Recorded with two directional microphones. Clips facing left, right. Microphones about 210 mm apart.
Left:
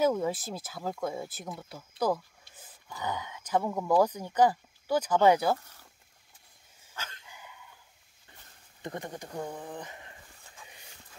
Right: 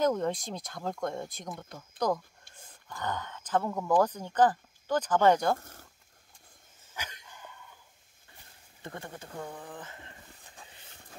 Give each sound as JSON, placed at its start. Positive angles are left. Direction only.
{"t": 0.0, "sound": "speech", "side_deg": 5}
{"t": 7.0, "sound": "dog", "side_deg": -15}
{"t": 7.2, "sound": "dog", "side_deg": 10}
{"t": 8.8, "sound": "speech", "side_deg": 20}